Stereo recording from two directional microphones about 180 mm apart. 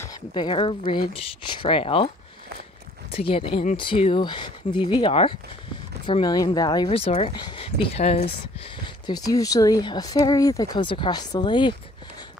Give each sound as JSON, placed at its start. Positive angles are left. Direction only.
{"t": 0.0, "sound": "speech", "side_deg": 20}
{"t": 3.1, "sound": "speech", "side_deg": 30}